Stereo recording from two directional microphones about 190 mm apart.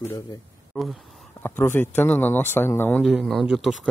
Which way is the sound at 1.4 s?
10° left (ahead or behind).